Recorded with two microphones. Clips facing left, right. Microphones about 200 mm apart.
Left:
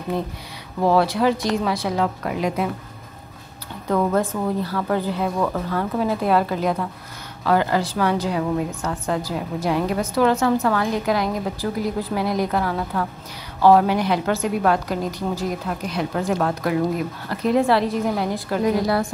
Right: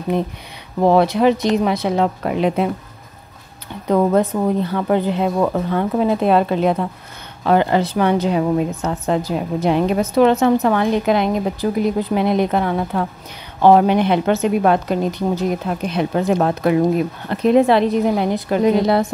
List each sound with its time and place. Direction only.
0.1 s a woman's voice: 20° right (ahead or behind)
3.8 s a woman's voice: 20° right (ahead or behind)